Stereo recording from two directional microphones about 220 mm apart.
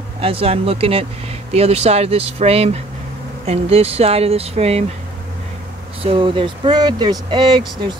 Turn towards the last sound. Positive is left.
turn(degrees=-20)  # may be behind; listen again after turning